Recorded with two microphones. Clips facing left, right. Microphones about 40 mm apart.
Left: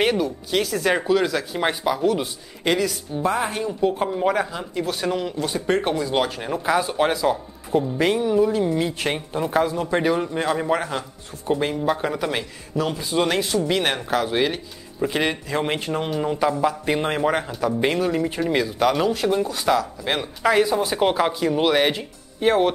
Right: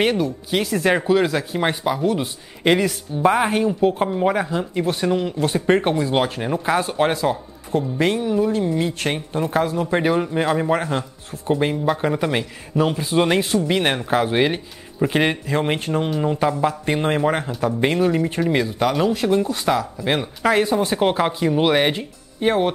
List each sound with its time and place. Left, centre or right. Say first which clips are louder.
0.0 s speech: right 1 dB; centre
2.6 s speech: right 4 dB; right
3.9 s speech: right 2 dB; centre
7.7 s speech: even; centre
12.7 s speech: right 4 dB; right
15.4 s speech: right 2 dB; centre